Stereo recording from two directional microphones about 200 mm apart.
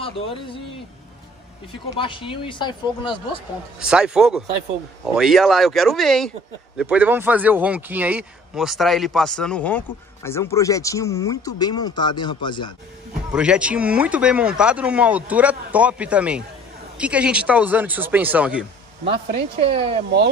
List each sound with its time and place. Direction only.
0.0 s speech: 25° left (ahead or behind)
2.0 s speech: 25° left (ahead or behind)
3.8 s speech: 5° right (ahead or behind); by 12.7 s 25° left (ahead or behind)
13.3 s speech: 5° right (ahead or behind)
19.0 s speech: 55° right (ahead or behind)
19.6 s speech: 30° right (ahead or behind)